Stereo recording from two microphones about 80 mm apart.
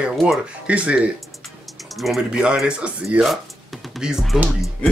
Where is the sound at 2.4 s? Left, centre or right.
Centre.